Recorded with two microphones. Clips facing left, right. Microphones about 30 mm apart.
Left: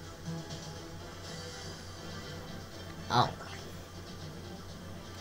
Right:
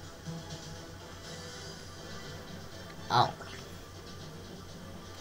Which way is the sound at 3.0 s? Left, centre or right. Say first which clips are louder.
Right 2 dB; centre.